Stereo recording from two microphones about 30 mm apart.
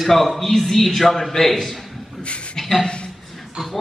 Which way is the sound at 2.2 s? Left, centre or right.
Left.